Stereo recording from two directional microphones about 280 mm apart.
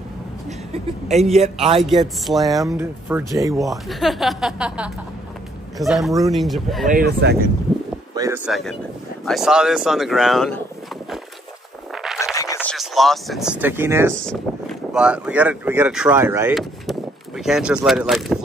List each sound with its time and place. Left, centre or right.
1.3 s a man's voice: right
1.8 s speech: centre
3.6 s speech: centre
6.9 s speech: right
8.1 s a sound: centre
8.5 s speech: centre
12.4 s speech: centre